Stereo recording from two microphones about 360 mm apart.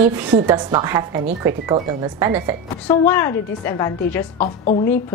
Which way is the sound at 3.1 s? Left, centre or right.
Centre.